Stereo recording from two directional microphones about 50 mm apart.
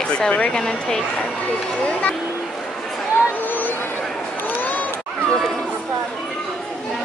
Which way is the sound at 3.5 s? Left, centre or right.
Left.